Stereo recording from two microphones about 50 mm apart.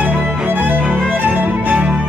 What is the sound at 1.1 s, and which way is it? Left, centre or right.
Violin, right.